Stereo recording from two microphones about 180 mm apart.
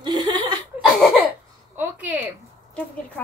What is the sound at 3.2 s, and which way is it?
Speech, 10° left (ahead or behind).